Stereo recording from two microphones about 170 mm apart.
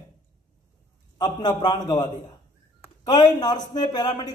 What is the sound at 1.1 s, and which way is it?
Speech, 25° left (ahead or behind).